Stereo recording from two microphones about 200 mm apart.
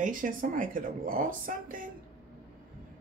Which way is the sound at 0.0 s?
40° right (ahead or behind).